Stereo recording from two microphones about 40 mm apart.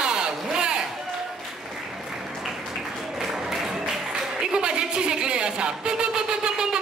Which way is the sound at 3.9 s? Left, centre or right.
Centre.